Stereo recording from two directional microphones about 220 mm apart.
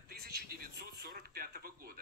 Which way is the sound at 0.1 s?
45° right (ahead or behind).